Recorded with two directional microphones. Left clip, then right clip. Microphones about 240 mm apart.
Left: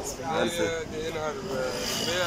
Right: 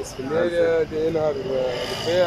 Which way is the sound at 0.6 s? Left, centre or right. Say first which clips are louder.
Right 10 dB; right.